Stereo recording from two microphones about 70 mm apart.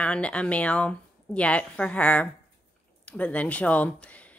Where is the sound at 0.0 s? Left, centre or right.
Centre.